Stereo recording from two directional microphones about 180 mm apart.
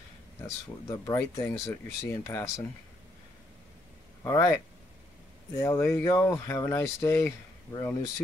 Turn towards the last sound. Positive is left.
turn(degrees=15)  # may be behind; listen again after turning